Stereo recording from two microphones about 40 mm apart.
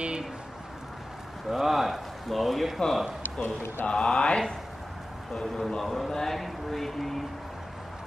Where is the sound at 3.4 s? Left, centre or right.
Left.